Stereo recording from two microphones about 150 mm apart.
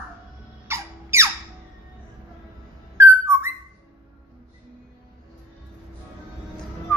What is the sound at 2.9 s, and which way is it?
Whistling, 15° right (ahead or behind).